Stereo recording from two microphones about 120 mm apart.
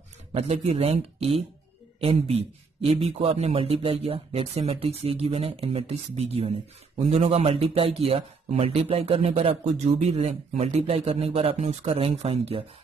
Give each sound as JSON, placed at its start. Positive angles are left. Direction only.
{"t": 0.3, "sound": "speech", "side_deg": -60}